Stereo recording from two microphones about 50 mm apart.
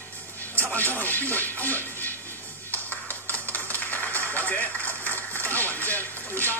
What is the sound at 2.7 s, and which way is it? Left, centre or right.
Music, left.